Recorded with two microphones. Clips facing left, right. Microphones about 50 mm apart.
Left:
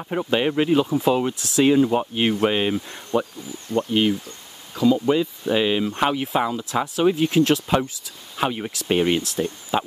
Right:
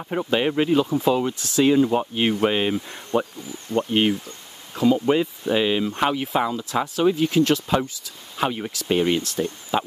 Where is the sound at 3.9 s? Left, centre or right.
Right.